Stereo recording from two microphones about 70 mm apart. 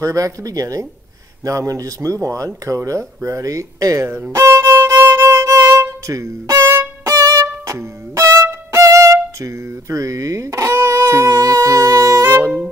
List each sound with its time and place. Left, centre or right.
0.0 s speech: right
4.3 s music: right
6.6 s music: right
7.2 s violin: right